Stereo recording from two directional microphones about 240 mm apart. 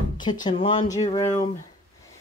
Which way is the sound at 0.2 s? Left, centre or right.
Centre.